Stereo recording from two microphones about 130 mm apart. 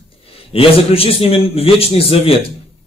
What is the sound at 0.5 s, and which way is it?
A man's voice, 45° left (ahead or behind).